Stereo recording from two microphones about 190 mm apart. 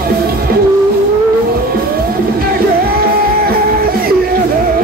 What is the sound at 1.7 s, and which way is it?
Music, 50° right (ahead or behind).